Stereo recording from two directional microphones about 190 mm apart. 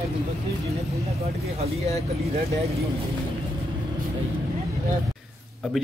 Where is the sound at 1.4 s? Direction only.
35° right (ahead or behind).